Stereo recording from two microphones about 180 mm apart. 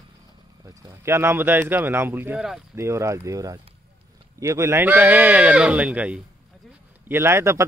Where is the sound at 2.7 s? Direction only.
15° right (ahead or behind).